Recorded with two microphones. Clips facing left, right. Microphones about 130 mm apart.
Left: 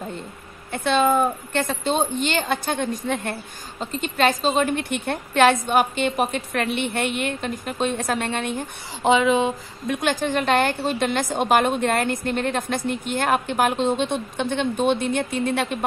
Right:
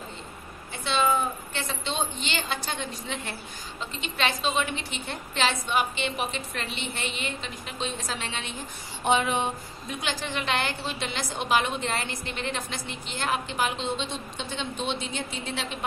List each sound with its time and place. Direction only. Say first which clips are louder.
0.7 s a woman's voice: left 6 dB; 50° left (ahead or behind)
4.7 s a woman's voice: left 10 dB; 55° left (ahead or behind)
9.0 s speech: left 7 dB; 90° left
9.9 s a woman's voice: left 9 dB; 50° left (ahead or behind)